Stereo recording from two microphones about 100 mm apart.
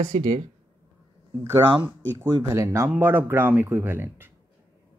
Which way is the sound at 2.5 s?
30° right (ahead or behind).